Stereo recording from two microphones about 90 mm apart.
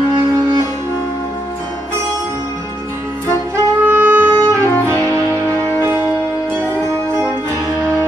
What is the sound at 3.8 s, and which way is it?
Music, 20° right (ahead or behind).